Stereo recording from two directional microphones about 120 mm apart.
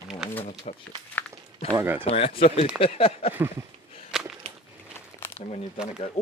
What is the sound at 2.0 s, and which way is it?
Speech, 50° left (ahead or behind).